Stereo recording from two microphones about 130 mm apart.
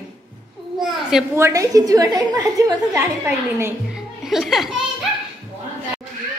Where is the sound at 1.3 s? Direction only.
20° right (ahead or behind).